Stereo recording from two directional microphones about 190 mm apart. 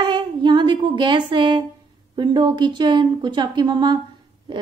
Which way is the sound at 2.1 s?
25° right (ahead or behind).